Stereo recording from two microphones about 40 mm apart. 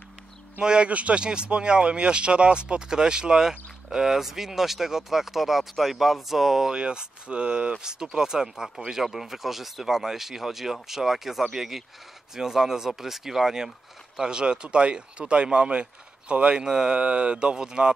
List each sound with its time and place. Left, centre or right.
0.6 s speech: right
0.8 s speech: right; by 6.7 s centre
6.7 s speech: right
14.2 s speech: right
16.6 s speech: centre
16.9 s speech: right